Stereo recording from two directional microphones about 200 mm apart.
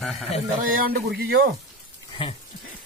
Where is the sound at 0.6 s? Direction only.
45° right (ahead or behind).